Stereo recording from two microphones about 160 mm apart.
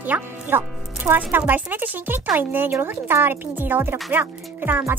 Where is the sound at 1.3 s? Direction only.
10° right (ahead or behind).